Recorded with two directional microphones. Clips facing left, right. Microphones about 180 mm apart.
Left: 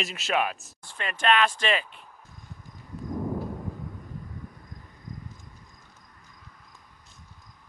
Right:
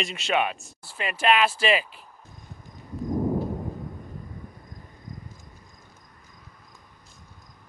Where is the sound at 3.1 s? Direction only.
20° right (ahead or behind).